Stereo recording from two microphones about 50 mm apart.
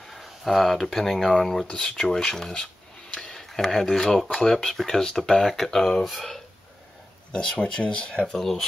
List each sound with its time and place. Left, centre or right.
0.1 s speech: centre
7.3 s speech: centre
8.4 s speech: centre